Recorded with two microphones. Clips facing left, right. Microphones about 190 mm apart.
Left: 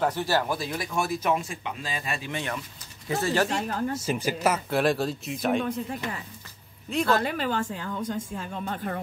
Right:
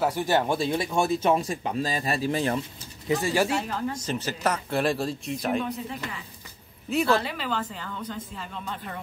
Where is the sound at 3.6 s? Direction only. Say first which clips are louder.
Left 1 dB; 50° left (ahead or behind).